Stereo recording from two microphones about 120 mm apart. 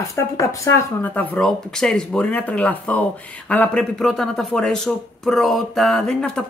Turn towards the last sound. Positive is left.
turn(degrees=5)  # may be behind; listen again after turning